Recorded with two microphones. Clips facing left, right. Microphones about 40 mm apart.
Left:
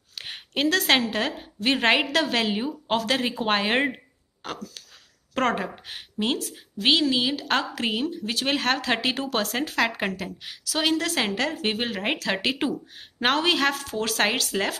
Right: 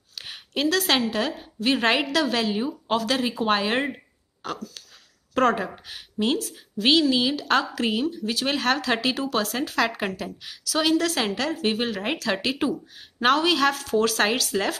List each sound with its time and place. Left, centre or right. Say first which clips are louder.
0.1 s a woman's voice: even; left
5.9 s speech: right 1 dB; left
6.2 s a woman's voice: right 2 dB; centre; by 9.7 s left
9.7 s a woman's voice: even; centre